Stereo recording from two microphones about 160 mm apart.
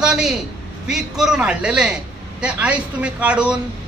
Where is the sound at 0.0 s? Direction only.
5° right (ahead or behind).